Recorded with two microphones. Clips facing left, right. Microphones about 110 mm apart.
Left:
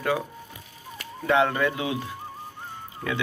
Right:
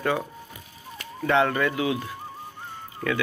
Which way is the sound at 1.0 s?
5° left (ahead or behind).